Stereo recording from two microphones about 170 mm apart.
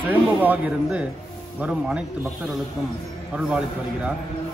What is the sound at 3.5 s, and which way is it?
Speech, 5° right (ahead or behind).